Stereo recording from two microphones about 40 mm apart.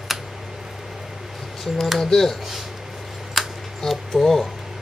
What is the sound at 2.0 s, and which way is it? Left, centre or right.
Speech, centre.